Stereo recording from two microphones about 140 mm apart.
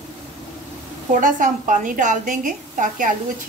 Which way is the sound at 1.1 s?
70° right (ahead or behind).